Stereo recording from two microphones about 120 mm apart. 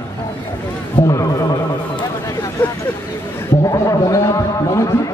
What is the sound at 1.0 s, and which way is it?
Speech, 30° left (ahead or behind).